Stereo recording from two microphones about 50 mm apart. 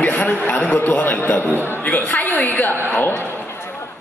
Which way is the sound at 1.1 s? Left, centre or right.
Left.